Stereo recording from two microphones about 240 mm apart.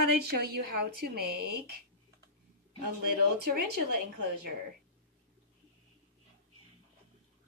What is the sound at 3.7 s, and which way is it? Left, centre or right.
Speech, right.